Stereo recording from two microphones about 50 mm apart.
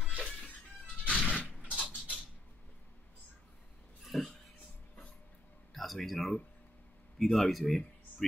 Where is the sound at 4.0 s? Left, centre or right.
Centre.